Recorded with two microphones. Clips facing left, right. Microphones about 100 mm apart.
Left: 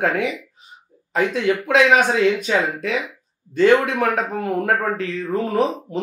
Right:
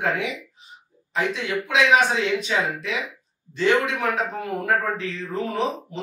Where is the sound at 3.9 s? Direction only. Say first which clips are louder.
Left 4 dB; 50° left (ahead or behind).